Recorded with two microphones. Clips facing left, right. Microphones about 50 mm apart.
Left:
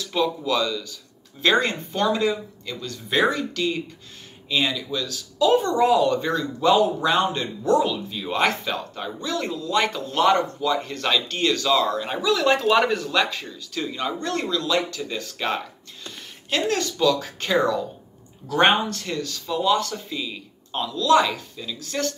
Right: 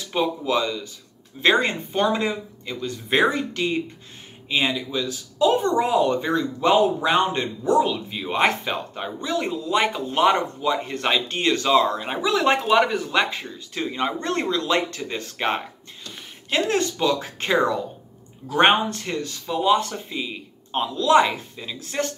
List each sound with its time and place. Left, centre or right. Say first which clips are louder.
0.0 s speech: even; right
12.6 s speech: even; centre
13.1 s speech: right 1 dB; right